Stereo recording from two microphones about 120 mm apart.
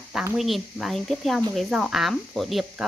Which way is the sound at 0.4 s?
Centre (ahead or behind).